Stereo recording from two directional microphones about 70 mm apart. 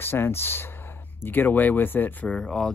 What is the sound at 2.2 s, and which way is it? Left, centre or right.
Speech, centre.